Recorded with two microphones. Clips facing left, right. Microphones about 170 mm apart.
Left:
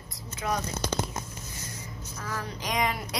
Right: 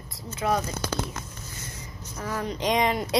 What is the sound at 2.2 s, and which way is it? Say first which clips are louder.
Speech: right 7 dB; 20° right (ahead or behind).